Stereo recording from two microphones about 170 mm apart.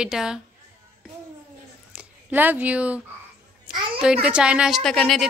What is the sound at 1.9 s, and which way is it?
Speech, 10° right (ahead or behind).